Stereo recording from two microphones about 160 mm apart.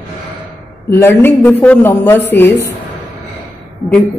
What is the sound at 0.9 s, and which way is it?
A man's voice, 15° left (ahead or behind).